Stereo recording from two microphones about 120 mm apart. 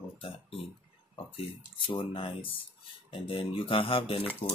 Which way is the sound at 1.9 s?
45° left (ahead or behind).